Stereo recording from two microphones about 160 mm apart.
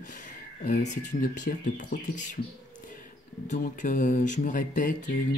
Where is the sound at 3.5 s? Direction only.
55° left (ahead or behind).